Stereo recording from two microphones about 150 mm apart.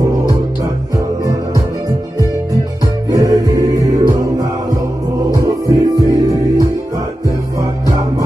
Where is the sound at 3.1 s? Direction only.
25° right (ahead or behind).